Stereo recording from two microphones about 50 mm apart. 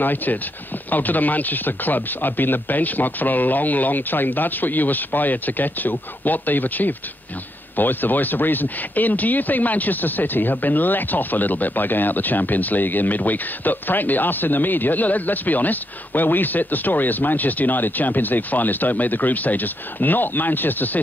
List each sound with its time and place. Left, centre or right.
0.0 s speech: left